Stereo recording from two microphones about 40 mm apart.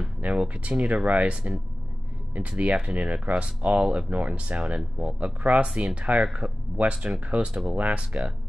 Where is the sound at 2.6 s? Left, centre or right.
Right.